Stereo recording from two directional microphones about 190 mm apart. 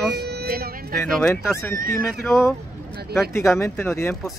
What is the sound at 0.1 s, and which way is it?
Vehicle, 55° right (ahead or behind).